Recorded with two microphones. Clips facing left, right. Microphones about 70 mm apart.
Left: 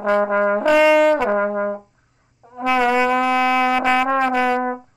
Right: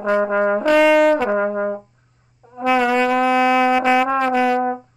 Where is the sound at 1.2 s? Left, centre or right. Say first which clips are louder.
Even; left.